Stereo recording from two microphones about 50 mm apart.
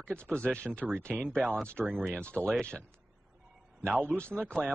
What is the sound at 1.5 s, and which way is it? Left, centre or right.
Speech, left.